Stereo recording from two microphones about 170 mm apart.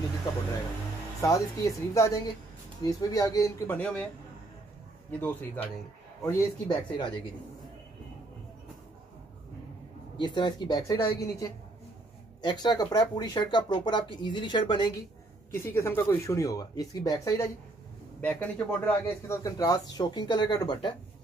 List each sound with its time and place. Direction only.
1.2 s a man's voice: 20° left (ahead or behind)
5.2 s speech: 10° left (ahead or behind)
6.2 s a man's voice: 25° left (ahead or behind)
10.1 s a man's voice: 25° left (ahead or behind)
15.5 s a man's voice: 15° left (ahead or behind)